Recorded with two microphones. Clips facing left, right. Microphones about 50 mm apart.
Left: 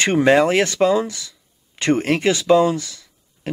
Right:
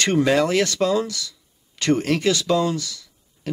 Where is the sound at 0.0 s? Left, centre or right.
Left.